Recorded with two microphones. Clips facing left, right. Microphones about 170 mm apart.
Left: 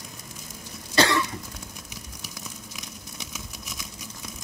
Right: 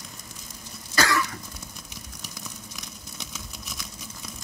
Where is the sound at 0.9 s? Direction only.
25° left (ahead or behind).